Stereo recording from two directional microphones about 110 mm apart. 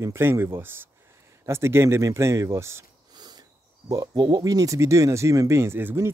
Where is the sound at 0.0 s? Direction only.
20° right (ahead or behind).